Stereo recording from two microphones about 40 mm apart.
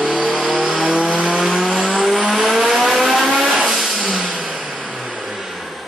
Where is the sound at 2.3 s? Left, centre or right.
Centre.